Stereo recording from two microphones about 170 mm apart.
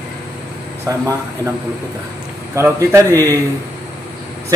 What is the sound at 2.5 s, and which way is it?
Speech, 15° right (ahead or behind).